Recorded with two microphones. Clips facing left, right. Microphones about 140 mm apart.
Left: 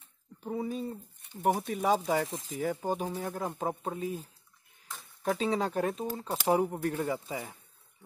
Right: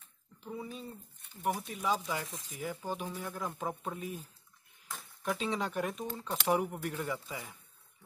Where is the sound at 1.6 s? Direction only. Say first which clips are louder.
Left 6 dB; 50° left (ahead or behind).